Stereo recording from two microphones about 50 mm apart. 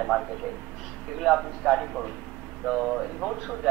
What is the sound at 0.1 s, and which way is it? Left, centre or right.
A man's voice, centre.